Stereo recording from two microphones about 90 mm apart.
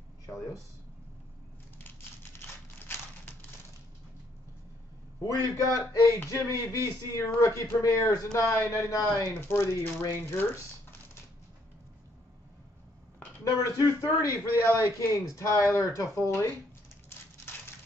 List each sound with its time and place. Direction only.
5.2 s a man's voice: 40° left (ahead or behind)
9.3 s speech: 25° left (ahead or behind)
13.4 s a man's voice: 35° left (ahead or behind)